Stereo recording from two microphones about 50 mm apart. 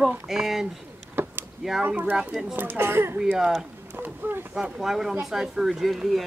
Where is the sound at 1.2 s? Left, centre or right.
Right.